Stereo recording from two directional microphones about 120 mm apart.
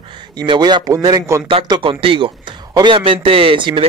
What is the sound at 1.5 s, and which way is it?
A man's voice, 45° right (ahead or behind).